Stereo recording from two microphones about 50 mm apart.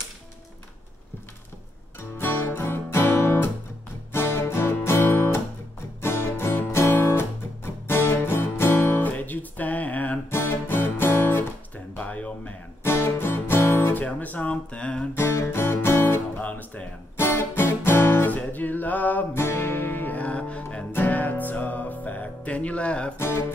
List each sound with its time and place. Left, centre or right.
2.0 s music: left
9.0 s music: left
10.3 s music: left
12.0 s a sound: left
12.8 s music: left
14.0 s a sound: left
15.1 s music: left
16.3 s music: left
17.2 s music: left
18.3 s music: left
19.3 s music: left
20.2 s music: left
20.9 s music: left
23.1 s music: left